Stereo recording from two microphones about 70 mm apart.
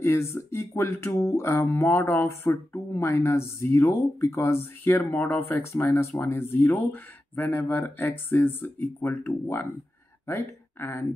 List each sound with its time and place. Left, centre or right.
0.0 s speech: left
2.5 s speech: left